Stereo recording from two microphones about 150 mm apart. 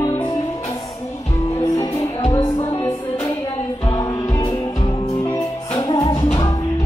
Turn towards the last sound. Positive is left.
turn(degrees=25)  # may be behind; listen again after turning